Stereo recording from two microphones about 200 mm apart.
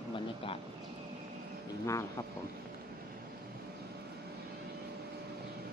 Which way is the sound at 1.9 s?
15° left (ahead or behind).